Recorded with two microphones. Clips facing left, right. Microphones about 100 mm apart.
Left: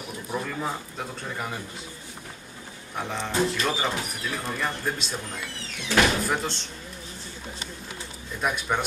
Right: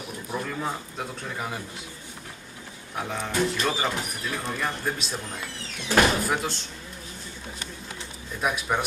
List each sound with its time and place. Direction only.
0.3 s a man's voice: centre (ahead or behind)
3.0 s a man's voice: centre (ahead or behind)
5.9 s speech: 35° right (ahead or behind)
6.2 s a man's voice: 5° right (ahead or behind)
8.4 s a man's voice: 5° right (ahead or behind)